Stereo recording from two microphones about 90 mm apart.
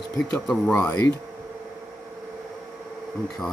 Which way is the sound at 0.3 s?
Centre (ahead or behind).